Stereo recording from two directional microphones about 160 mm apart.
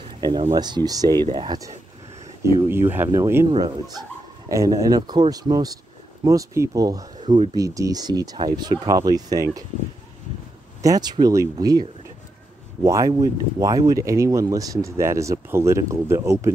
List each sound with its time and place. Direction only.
0.2 s speech: 25° right (ahead or behind)
2.4 s speech: 15° right (ahead or behind)
3.5 s speech: 25° right (ahead or behind)
10.8 s speech: 25° right (ahead or behind)
12.8 s speech: 20° right (ahead or behind)